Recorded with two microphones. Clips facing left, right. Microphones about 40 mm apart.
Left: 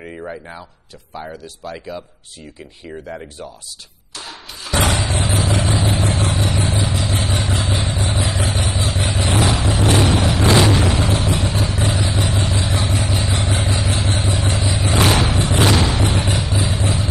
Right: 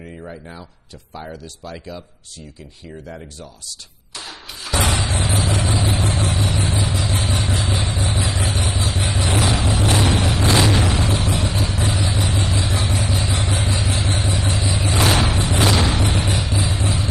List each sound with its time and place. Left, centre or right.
0.0 s a sound: left
1.1 s speech: centre
2.9 s speech: left
4.7 s vehicle: left